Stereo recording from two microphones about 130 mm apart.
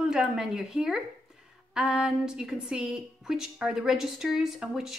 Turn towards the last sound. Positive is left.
turn(degrees=-5)  # may be behind; listen again after turning